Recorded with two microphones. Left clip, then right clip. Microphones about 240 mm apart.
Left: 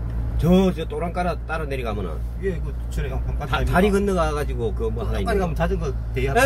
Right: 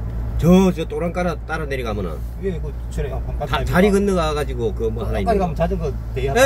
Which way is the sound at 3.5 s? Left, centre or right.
Centre.